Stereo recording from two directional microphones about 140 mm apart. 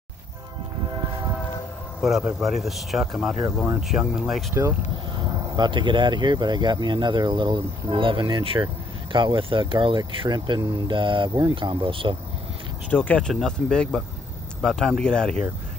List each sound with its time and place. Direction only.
2.0 s speech: centre (ahead or behind)
5.1 s speech: 30° right (ahead or behind)
12.9 s speech: 10° left (ahead or behind)